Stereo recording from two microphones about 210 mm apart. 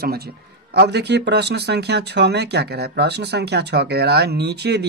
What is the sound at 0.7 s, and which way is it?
Speech, 55° right (ahead or behind).